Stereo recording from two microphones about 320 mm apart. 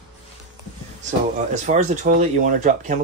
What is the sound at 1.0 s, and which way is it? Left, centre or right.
Speech, right.